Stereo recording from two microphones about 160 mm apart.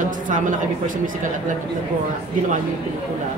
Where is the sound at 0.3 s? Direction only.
55° right (ahead or behind).